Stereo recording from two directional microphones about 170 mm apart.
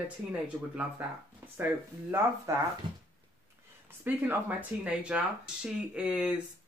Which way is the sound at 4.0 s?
10° right (ahead or behind).